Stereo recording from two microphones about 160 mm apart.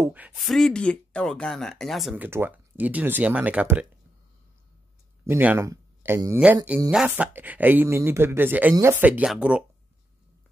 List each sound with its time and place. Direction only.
0.0 s speech: 10° right (ahead or behind)
0.5 s speech: 5° left (ahead or behind)
2.2 s speech: 15° right (ahead or behind)
5.3 s speech: 10° right (ahead or behind)